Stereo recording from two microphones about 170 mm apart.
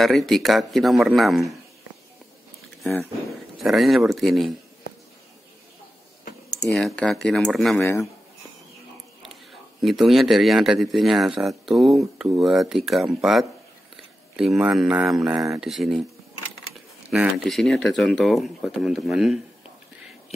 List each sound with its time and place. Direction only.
0.0 s speech: centre (ahead or behind)
3.3 s speech: centre (ahead or behind)
6.7 s speech: 5° left (ahead or behind)
7.8 s speech: 15° left (ahead or behind)
9.2 s speech: centre (ahead or behind)
17.1 s speech: centre (ahead or behind)